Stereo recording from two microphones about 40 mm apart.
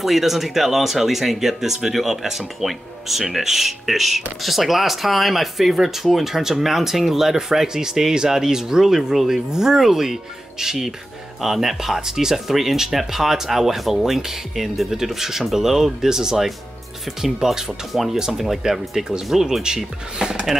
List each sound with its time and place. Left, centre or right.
0.0 s speech: centre